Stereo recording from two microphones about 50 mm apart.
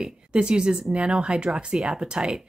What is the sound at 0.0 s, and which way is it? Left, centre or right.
A woman's voice, centre.